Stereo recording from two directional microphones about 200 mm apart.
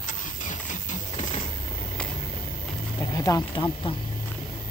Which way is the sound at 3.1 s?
15° left (ahead or behind).